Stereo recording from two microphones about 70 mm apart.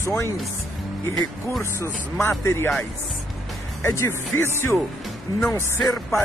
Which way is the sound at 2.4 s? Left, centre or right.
Left.